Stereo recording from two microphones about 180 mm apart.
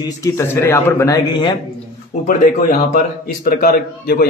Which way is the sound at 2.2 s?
50° left (ahead or behind).